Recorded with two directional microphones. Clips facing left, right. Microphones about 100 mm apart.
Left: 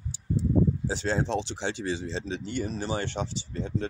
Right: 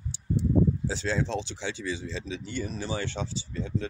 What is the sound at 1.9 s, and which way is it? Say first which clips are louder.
Speech: left 2 dB; 30° left (ahead or behind).